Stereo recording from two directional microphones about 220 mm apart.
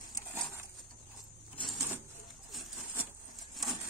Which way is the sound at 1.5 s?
Centre (ahead or behind).